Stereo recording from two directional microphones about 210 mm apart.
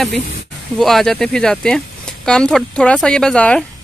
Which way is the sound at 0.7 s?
Centre (ahead or behind).